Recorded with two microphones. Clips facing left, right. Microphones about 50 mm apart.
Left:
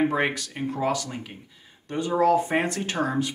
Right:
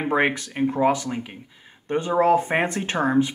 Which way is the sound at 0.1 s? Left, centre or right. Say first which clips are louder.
Right 4 dB; right.